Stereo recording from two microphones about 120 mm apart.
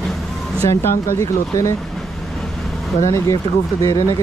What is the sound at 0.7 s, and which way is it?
Speech, 20° left (ahead or behind).